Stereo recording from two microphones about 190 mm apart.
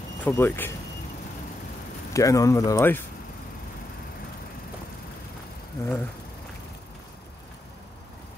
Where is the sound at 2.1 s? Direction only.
15° left (ahead or behind).